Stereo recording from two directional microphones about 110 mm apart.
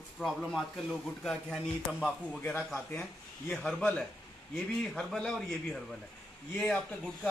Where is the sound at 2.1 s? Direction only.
10° left (ahead or behind).